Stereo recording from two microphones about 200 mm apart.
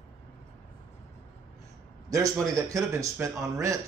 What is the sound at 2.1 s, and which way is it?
Speech, 15° right (ahead or behind).